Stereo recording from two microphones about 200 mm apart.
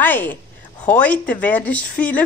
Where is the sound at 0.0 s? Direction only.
10° left (ahead or behind).